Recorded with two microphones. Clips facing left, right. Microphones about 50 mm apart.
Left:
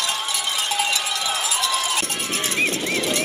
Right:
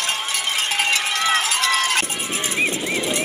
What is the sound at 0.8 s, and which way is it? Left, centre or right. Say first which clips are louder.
Cowbell: right 3 dB; right.